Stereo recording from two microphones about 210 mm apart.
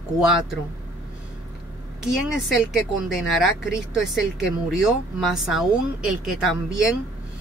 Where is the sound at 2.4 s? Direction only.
5° right (ahead or behind).